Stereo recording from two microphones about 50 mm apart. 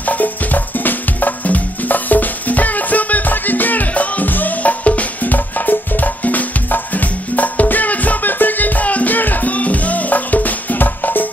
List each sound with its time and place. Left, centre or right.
0.0 s music: left